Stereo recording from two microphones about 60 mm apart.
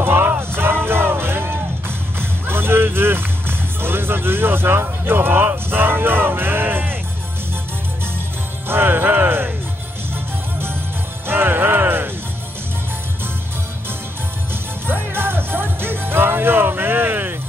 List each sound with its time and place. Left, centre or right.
0.0 s music: right
8.6 s music: right
11.2 s music: right
14.5 s music: right